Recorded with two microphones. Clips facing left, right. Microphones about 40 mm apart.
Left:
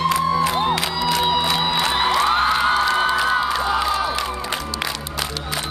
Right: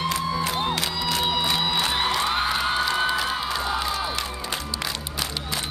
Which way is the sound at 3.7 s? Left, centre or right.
Left.